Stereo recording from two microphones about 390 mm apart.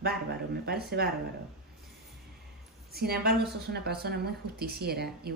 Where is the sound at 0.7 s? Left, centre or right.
Right.